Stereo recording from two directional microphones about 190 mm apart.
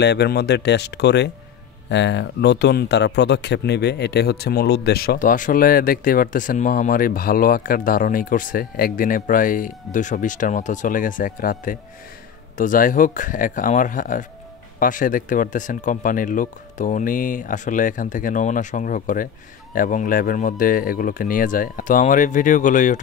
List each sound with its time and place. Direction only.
0.0 s speech: 60° left (ahead or behind); by 22.9 s 40° left (ahead or behind)